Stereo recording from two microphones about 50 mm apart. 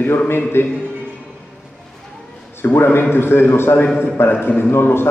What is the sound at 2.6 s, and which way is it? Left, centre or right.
A man's voice, left.